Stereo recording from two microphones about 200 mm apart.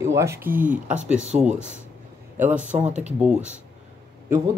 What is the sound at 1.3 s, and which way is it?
Speech, 35° right (ahead or behind).